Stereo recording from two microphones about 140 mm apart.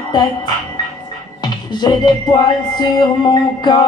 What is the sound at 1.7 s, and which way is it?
Music, 30° left (ahead or behind).